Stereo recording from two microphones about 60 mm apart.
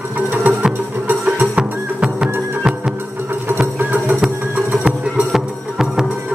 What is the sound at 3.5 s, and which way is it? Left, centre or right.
Music, right.